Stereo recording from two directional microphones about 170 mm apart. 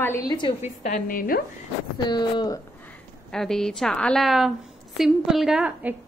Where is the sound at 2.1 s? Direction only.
25° left (ahead or behind).